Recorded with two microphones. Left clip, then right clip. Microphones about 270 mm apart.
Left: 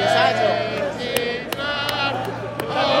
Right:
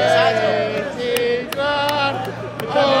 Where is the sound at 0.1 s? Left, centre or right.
Left.